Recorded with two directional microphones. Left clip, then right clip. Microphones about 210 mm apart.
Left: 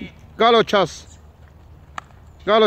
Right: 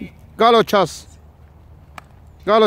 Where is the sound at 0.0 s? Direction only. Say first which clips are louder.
Right 2 dB; 20° right (ahead or behind).